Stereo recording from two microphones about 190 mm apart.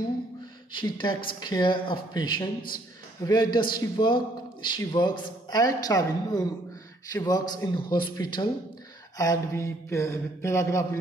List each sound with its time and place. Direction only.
0.7 s a man's voice: 25° left (ahead or behind)